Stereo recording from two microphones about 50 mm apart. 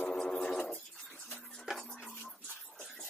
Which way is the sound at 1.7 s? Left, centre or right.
Centre.